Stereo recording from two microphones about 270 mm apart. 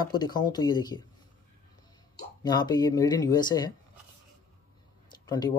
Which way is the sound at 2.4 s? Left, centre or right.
Centre.